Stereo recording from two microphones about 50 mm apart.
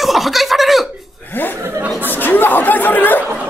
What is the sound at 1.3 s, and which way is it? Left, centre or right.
A woman's voice, left.